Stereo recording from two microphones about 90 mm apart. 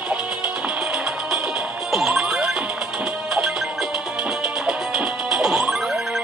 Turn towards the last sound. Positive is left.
turn(degrees=-5)  # may be behind; listen again after turning